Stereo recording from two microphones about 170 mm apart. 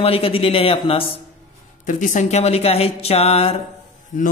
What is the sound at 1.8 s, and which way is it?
Speech, 45° left (ahead or behind).